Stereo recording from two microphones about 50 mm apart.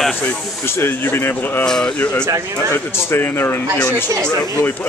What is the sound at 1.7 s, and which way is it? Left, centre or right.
Speech, centre.